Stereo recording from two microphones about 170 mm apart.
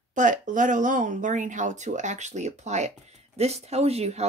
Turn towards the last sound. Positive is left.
turn(degrees=-40)  # may be behind; listen again after turning